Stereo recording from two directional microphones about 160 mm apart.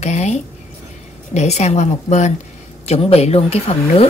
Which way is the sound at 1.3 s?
45° left (ahead or behind).